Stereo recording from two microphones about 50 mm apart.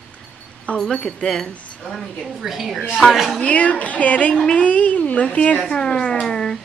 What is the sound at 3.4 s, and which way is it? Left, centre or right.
A woman's voice, left.